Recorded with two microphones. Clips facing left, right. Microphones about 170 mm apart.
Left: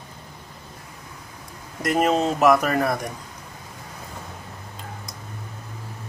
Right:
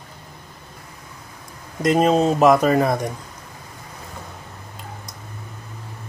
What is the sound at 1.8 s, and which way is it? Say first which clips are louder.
Speech: right 4 dB; 20° right (ahead or behind).